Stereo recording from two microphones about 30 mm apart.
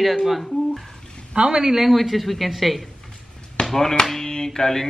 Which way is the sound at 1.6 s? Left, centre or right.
Centre.